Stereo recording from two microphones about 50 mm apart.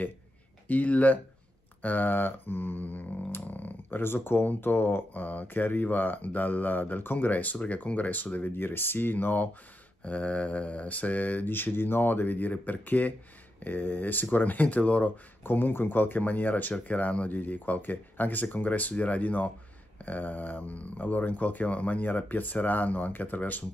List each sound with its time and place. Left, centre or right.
0.7 s speech: left
3.3 s a sound: left
4.6 s speech: left
10.0 s speech: left
15.4 s speech: left